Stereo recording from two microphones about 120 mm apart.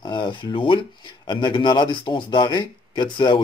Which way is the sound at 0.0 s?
40° left (ahead or behind).